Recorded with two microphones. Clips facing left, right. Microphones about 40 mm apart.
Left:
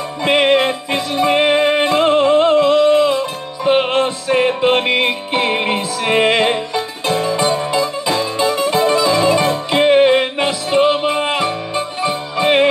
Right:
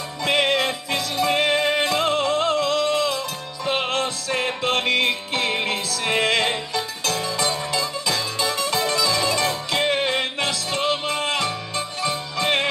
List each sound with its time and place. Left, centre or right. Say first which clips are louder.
0.2 s music: left 7 dB; left